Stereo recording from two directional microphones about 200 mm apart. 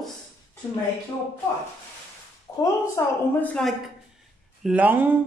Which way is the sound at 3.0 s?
15° left (ahead or behind).